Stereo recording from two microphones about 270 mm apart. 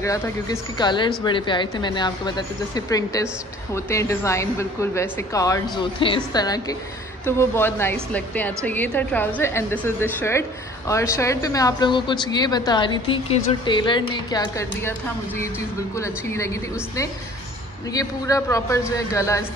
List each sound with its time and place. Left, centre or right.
0.0 s speech: centre
16.0 s speech: centre